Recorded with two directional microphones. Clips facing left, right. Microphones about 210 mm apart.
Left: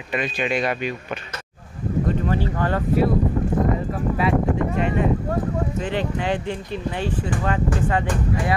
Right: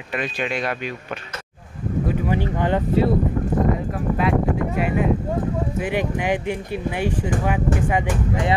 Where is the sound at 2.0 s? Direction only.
15° right (ahead or behind).